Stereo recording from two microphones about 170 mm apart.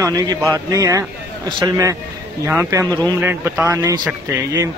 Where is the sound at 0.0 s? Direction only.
20° right (ahead or behind).